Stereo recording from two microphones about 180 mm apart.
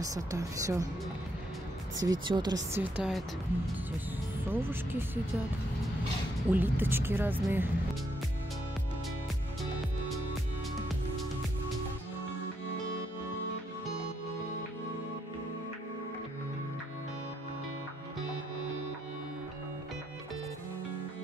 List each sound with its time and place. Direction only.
0.0 s speech: 20° right (ahead or behind)
2.0 s speech: 20° right (ahead or behind)
2.8 s speech: centre (ahead or behind)
4.5 s speech: 10° right (ahead or behind)
6.5 s speech: 10° right (ahead or behind)